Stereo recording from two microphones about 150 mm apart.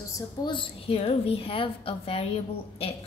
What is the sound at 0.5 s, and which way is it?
A woman's voice, 40° left (ahead or behind).